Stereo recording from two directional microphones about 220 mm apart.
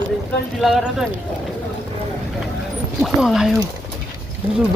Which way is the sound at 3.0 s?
Centre (ahead or behind).